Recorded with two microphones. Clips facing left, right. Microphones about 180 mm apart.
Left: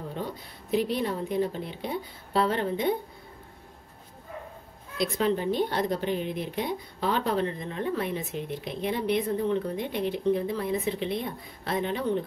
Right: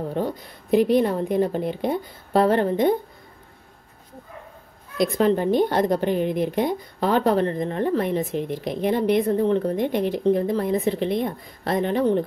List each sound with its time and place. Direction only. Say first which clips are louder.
0.1 s a woman's voice: right 9 dB; 50° right (ahead or behind)
4.9 s a woman's voice: right 6 dB; 50° right (ahead or behind)